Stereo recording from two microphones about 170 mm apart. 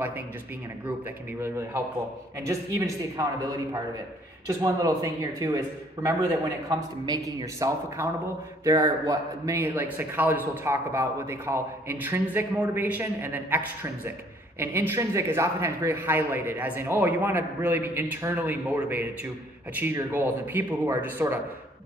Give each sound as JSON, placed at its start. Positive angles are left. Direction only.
{"t": 1.4, "sound": "a man's voice", "side_deg": -15}
{"t": 4.5, "sound": "a man's voice", "side_deg": -20}
{"t": 14.6, "sound": "a man's voice", "side_deg": -15}